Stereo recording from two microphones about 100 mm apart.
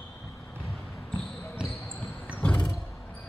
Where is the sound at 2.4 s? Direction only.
10° left (ahead or behind).